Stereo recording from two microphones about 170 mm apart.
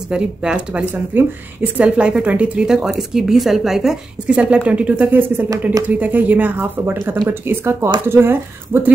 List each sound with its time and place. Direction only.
0.1 s a woman's voice: 5° right (ahead or behind)